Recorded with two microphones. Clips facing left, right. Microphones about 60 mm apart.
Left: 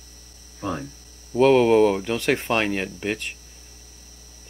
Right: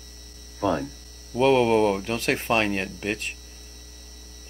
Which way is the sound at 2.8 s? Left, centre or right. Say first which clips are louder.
Left 2 dB; centre.